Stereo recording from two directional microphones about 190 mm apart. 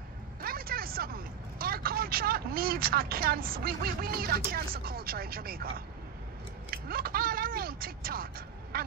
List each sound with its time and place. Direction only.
0.4 s speech: 50° right (ahead or behind)
6.7 s a sound: 50° right (ahead or behind)
8.7 s quack: 50° right (ahead or behind)